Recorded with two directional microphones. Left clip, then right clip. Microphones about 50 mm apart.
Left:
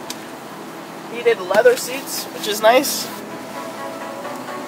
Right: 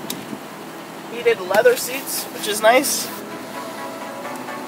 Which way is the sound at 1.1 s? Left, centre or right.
Centre.